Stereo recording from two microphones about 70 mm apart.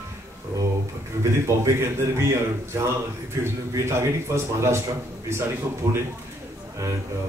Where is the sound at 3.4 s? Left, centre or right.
Right.